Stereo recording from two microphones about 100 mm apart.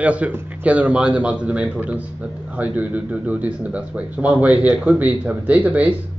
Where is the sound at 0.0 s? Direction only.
15° right (ahead or behind).